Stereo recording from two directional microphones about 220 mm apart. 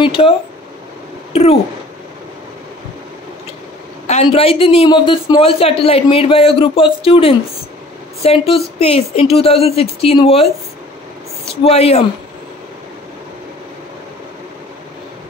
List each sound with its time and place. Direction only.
0.0 s speech: 25° left (ahead or behind)
1.3 s speech: 25° left (ahead or behind)
4.1 s a man's voice: 25° left (ahead or behind)
11.6 s a man's voice: 25° left (ahead or behind)